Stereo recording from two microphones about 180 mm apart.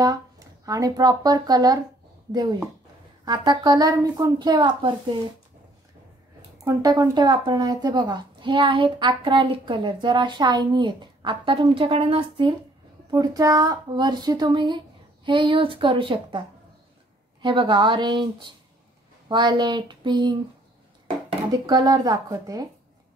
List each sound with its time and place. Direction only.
0.0 s speech: 20° right (ahead or behind)
3.3 s speech: 20° right (ahead or behind)
6.6 s speech: 20° right (ahead or behind)
21.5 s speech: 20° right (ahead or behind)